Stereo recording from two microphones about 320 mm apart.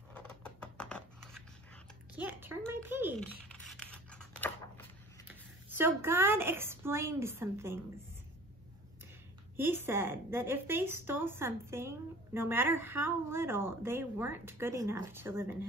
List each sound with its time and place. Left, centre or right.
0.1 s scissors: centre
2.1 s scratch: centre
5.3 s a woman's voice: centre
9.6 s speech: centre